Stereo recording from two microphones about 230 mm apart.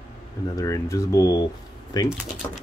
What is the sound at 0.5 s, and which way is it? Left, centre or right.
Speech, centre.